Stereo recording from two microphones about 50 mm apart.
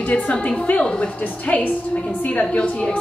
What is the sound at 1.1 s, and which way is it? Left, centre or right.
A woman's voice, left.